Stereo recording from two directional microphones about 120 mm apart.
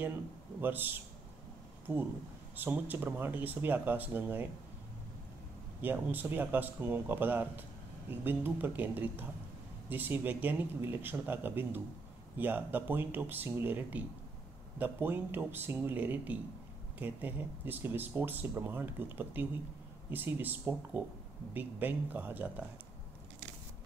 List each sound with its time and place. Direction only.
0.6 s speech: 15° right (ahead or behind)
5.8 s speech: 15° right (ahead or behind)